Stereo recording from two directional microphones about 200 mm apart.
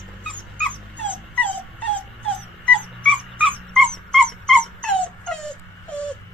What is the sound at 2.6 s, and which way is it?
Dog, 5° left (ahead or behind).